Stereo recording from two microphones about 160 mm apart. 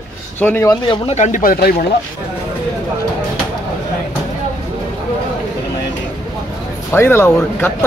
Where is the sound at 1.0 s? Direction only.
45° left (ahead or behind); by 1.7 s 65° left (ahead or behind).